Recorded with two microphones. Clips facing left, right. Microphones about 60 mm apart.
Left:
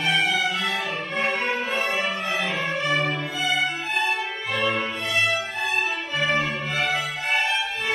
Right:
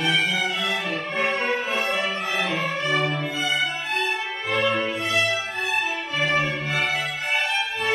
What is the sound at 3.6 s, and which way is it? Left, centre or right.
Music, centre.